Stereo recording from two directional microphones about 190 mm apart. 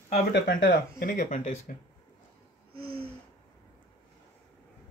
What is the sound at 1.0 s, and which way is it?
Speech, 50° left (ahead or behind).